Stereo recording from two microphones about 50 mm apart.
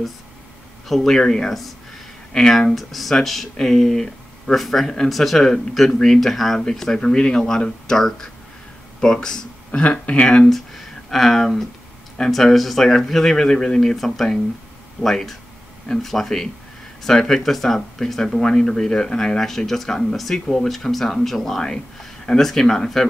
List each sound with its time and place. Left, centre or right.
0.8 s speech: centre
1.1 s speech: centre
9.7 s speech: left
10.5 s speech: centre